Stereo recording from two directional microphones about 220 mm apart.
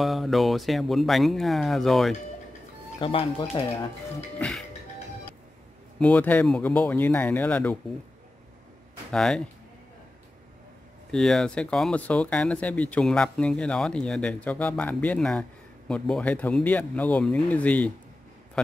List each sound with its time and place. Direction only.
0.0 s speech: centre (ahead or behind)
3.0 s speech: 25° left (ahead or behind)
4.4 s music: centre (ahead or behind)
5.9 s speech: 5° left (ahead or behind)
9.1 s speech: centre (ahead or behind)
11.1 s speech: centre (ahead or behind)